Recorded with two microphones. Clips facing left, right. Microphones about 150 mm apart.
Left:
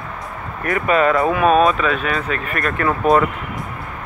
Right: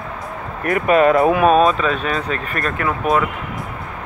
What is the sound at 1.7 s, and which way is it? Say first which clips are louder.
Speech: even; 35° right (ahead or behind).